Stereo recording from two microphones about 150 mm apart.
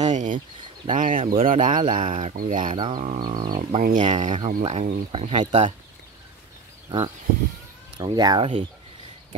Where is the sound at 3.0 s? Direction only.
55° right (ahead or behind).